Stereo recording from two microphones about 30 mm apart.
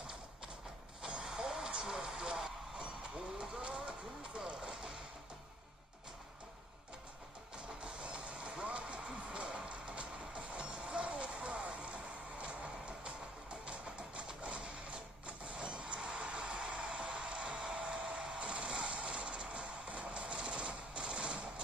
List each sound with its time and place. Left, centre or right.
1.2 s vehicle: centre
2.0 s a sound: right
2.8 s vehicle: right
7.5 s music: right
10.6 s music: right
14.2 s printer: right
15.5 s music: right
17.7 s hair dryer: right
18.6 s a sound: right
18.9 s music: right
19.9 s vehicle: right
20.2 s machine gun: right